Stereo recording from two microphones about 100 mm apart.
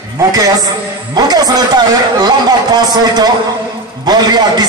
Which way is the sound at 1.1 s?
40° right (ahead or behind).